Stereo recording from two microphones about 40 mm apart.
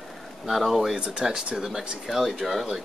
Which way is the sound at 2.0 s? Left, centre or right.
Centre.